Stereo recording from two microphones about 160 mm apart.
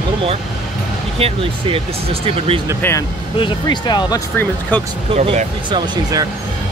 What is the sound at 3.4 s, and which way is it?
Speech, 30° left (ahead or behind).